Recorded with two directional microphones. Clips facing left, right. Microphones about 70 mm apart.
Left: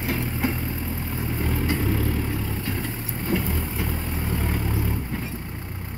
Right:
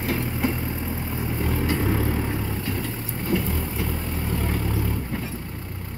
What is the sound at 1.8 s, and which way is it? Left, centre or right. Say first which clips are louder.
Vehicle: right 1 dB; centre.